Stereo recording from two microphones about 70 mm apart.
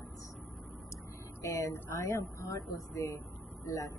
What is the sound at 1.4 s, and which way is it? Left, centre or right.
Speech, left.